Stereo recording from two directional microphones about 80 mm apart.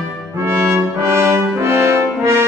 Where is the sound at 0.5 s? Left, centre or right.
Right.